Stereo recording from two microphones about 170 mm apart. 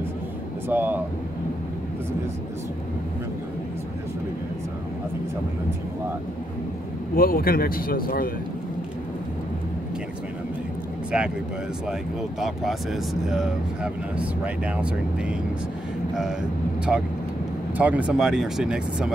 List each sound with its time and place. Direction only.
0.7 s speech: 10° right (ahead or behind)
7.2 s speech: 60° left (ahead or behind)
11.1 s speech: 5° right (ahead or behind)
17.7 s speech: 10° right (ahead or behind)